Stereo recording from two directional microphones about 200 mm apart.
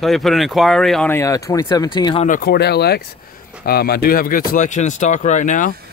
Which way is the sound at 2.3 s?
50° left (ahead or behind).